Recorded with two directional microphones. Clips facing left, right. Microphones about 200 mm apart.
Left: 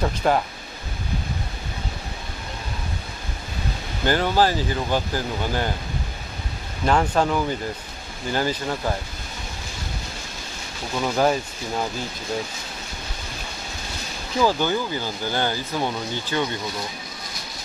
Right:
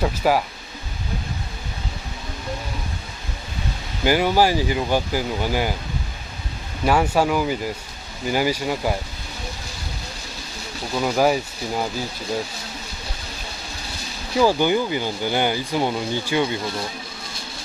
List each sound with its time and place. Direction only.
0.0 s speech: 5° right (ahead or behind)
4.0 s speech: 10° right (ahead or behind)
6.9 s speech: 10° right (ahead or behind)
11.0 s speech: 10° right (ahead or behind)
14.4 s speech: 15° right (ahead or behind)